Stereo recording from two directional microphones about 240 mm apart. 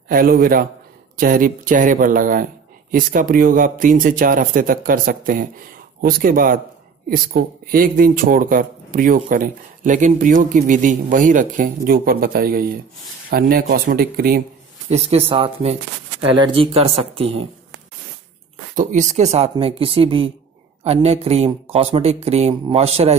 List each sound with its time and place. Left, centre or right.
0.1 s speech: right
14.9 s speech: right
18.8 s speech: right